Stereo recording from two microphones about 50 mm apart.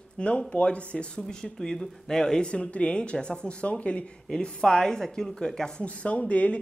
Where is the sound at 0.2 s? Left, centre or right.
Left.